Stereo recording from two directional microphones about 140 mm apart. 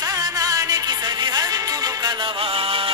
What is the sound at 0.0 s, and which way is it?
Music, 25° right (ahead or behind).